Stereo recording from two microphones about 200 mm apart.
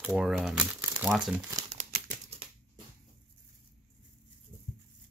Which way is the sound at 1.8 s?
40° right (ahead or behind).